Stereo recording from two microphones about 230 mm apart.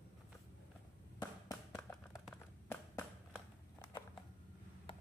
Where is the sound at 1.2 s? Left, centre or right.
Centre.